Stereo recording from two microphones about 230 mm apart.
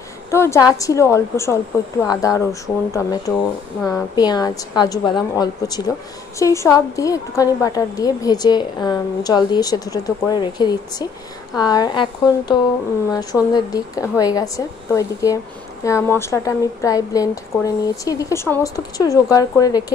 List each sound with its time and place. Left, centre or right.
0.3 s a woman's voice: centre